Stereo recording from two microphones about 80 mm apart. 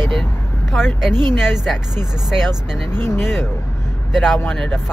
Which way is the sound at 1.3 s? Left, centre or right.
Centre.